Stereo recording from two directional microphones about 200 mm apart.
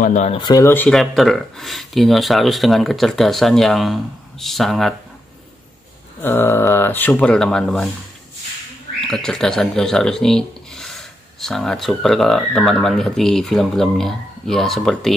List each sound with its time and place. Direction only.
0.0 s speech: 35° left (ahead or behind)
0.4 s speech: 20° left (ahead or behind); by 4.9 s centre (ahead or behind)
6.2 s speech: 10° left (ahead or behind)
9.0 s speech: centre (ahead or behind)